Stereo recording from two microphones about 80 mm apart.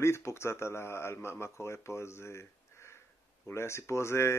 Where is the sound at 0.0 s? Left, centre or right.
Left.